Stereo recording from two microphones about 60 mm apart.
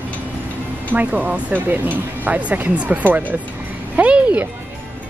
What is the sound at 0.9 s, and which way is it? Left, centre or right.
Speech, right.